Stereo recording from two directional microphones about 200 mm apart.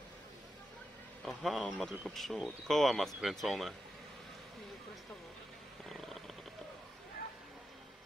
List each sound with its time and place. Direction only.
1.2 s speech: centre (ahead or behind)